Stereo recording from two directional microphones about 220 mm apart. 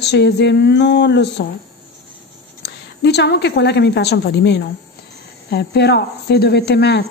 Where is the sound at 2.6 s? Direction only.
50° left (ahead or behind).